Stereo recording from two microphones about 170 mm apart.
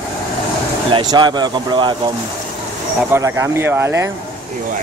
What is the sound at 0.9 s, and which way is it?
Speech, 25° right (ahead or behind).